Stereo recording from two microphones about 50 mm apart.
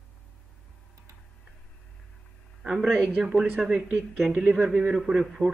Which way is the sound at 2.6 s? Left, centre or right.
Centre.